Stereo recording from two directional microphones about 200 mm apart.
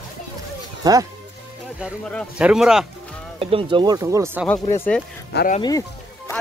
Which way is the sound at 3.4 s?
30° right (ahead or behind).